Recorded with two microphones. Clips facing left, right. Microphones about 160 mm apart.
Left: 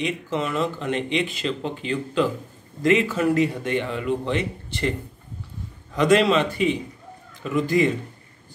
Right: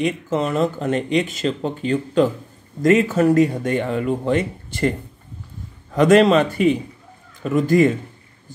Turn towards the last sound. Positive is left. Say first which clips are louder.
# right 5 dB
turn(degrees=-45)  # may be behind; listen again after turning